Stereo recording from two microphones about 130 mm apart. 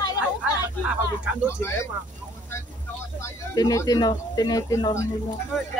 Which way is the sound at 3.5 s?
30° left (ahead or behind).